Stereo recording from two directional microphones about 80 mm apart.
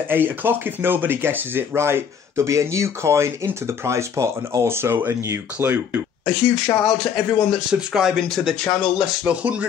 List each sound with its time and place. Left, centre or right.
0.1 s speech: right
6.2 s speech: centre